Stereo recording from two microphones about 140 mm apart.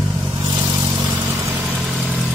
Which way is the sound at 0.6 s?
30° right (ahead or behind).